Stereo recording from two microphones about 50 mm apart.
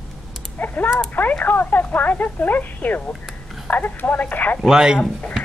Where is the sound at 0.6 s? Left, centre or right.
Left.